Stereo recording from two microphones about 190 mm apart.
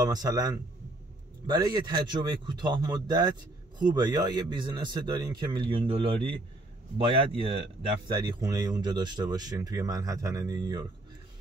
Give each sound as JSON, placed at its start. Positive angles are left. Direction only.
{"t": 0.0, "sound": "a man's voice", "side_deg": -20}